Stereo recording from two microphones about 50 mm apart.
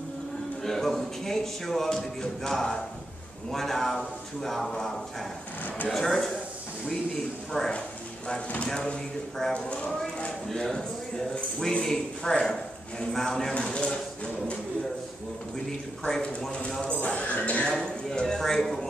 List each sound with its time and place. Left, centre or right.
0.6 s speech: centre
7.5 s speech: centre
17.7 s speech: centre